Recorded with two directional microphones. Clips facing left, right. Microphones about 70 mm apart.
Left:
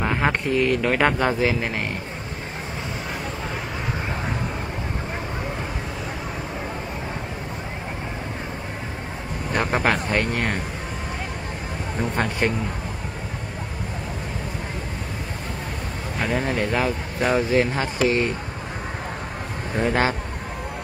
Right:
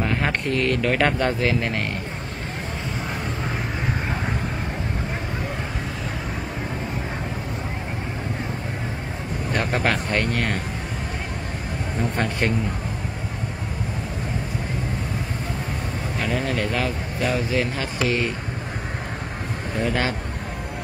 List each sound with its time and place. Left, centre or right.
0.0 s speech: centre
9.5 s speech: centre
12.2 s speech: centre
16.2 s speech: left
17.2 s speech: left
19.8 s speech: left